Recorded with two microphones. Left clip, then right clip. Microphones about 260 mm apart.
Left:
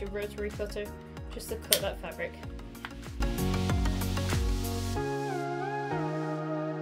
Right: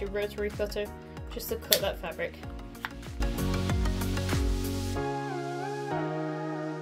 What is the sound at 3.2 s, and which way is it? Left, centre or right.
Music, centre.